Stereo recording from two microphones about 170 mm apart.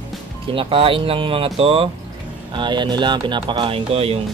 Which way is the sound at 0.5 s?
30° right (ahead or behind).